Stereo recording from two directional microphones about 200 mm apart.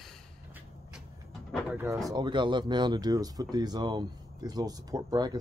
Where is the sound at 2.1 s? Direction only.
20° right (ahead or behind).